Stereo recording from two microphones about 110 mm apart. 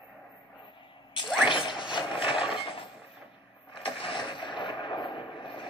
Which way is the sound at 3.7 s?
55° left (ahead or behind).